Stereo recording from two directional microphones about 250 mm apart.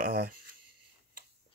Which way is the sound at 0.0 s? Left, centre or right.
Right.